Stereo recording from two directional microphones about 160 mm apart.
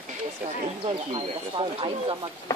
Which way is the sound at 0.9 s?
35° right (ahead or behind).